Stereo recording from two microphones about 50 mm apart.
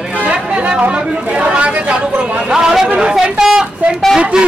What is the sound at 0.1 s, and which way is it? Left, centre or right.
Chatter, right.